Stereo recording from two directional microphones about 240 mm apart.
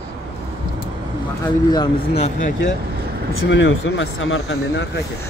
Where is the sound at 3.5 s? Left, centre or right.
Left.